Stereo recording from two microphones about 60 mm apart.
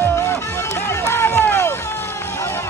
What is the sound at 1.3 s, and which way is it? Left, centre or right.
Run, left.